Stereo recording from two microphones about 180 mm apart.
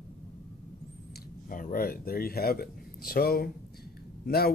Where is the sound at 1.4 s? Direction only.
50° left (ahead or behind).